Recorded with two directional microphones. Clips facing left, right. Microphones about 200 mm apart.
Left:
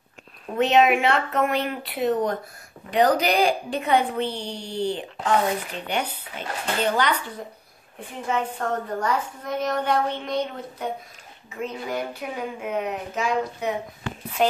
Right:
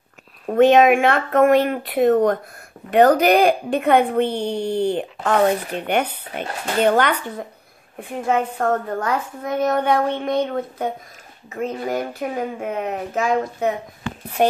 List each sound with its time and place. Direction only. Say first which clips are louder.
0.5 s a woman's voice: right 6 dB; 50° right (ahead or behind)